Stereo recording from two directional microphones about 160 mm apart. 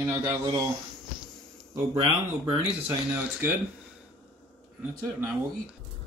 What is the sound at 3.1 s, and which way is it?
Speech, 10° right (ahead or behind).